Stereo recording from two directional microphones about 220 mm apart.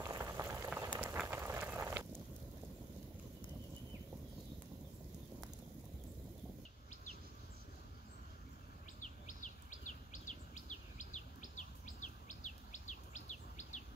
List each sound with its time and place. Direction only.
0.0 s boiling: 10° right (ahead or behind)
0.9 s a sound: 10° right (ahead or behind)
9.0 s bird vocalization: 35° left (ahead or behind)